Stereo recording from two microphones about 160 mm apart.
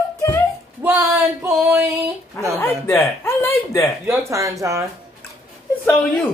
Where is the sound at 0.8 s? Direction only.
15° right (ahead or behind).